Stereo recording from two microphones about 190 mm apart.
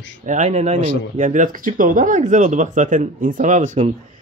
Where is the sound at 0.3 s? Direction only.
40° right (ahead or behind).